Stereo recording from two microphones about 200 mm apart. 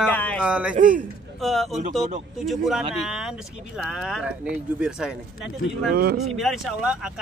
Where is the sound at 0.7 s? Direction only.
40° right (ahead or behind).